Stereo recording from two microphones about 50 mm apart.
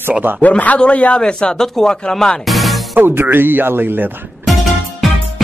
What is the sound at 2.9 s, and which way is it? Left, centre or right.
Speech, right.